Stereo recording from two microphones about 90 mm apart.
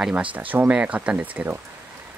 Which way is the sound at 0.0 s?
15° right (ahead or behind).